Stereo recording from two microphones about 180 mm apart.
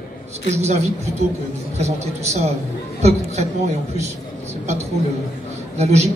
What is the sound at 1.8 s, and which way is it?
A man's voice, 35° right (ahead or behind).